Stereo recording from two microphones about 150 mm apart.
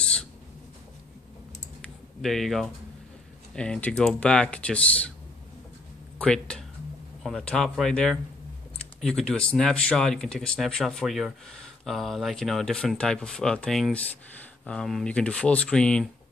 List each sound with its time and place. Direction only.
0.0 s a sound: 5° left (ahead or behind)
2.2 s speech: centre (ahead or behind)
6.1 s speech: 5° left (ahead or behind)